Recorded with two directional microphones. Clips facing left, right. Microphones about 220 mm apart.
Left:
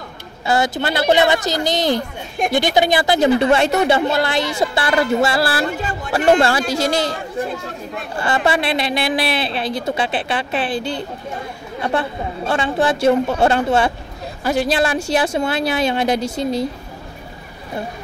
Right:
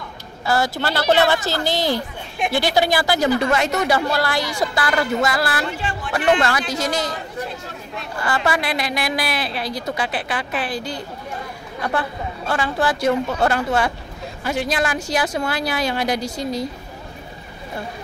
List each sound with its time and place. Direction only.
0.5 s a woman's voice: 20° left (ahead or behind)
8.5 s speech: 25° left (ahead or behind)